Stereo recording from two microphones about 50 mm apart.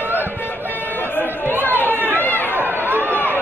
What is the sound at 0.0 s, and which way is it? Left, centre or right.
Vehicle, right.